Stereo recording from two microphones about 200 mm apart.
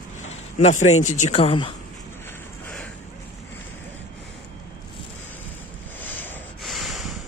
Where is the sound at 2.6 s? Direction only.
5° left (ahead or behind).